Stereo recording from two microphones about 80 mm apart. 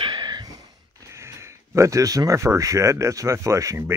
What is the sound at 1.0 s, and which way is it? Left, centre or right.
Speech, right.